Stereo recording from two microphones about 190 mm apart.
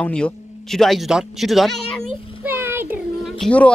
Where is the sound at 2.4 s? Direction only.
10° right (ahead or behind); by 3.7 s 5° left (ahead or behind).